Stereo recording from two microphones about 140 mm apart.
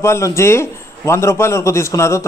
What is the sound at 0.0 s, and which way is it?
A man's voice, 20° left (ahead or behind).